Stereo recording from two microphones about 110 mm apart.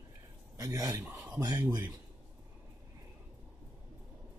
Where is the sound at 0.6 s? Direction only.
35° right (ahead or behind).